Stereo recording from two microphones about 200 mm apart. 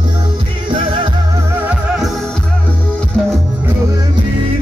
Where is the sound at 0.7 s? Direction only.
25° right (ahead or behind).